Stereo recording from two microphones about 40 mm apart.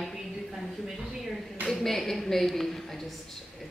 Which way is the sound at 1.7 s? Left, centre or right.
Centre.